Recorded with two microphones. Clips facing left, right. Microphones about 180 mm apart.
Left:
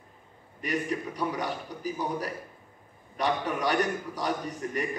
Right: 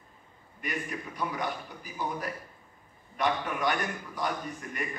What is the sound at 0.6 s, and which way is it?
A man's voice, 35° left (ahead or behind).